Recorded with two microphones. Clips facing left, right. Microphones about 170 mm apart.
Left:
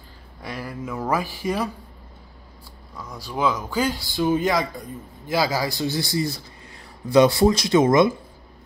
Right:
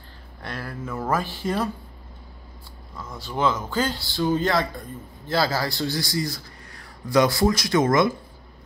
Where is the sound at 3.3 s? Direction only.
10° left (ahead or behind); by 7.8 s 25° left (ahead or behind).